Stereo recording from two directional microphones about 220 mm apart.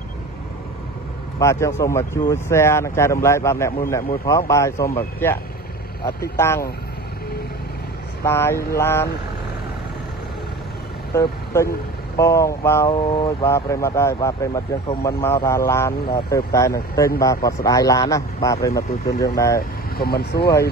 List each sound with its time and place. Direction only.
1.4 s speech: 15° left (ahead or behind)
8.2 s speech: 10° left (ahead or behind)
11.1 s speech: 15° left (ahead or behind)
20.0 s speech: 45° left (ahead or behind)